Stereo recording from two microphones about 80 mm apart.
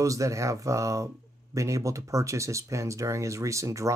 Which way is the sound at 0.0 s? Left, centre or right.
Right.